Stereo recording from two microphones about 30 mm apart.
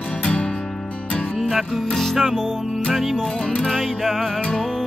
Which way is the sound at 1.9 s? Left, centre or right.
Centre.